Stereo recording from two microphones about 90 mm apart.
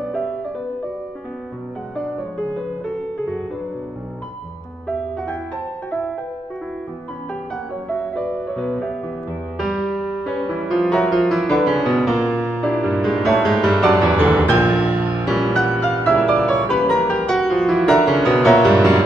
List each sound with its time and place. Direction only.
7.9 s music: 5° left (ahead or behind)
14.0 s music: 20° right (ahead or behind)
15.2 s music: 5° left (ahead or behind)